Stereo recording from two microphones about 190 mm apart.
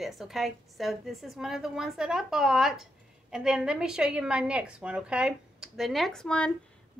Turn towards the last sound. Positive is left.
turn(degrees=5)  # may be behind; listen again after turning